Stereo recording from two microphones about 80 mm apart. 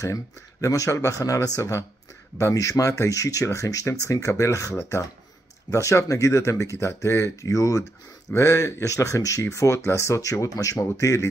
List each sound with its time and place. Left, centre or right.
0.0 s speech: left